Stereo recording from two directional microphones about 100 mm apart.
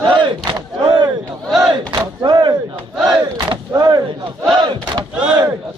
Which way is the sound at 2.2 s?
50° right (ahead or behind).